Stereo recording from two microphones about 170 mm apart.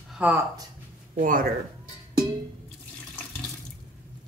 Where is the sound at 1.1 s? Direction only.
55° right (ahead or behind).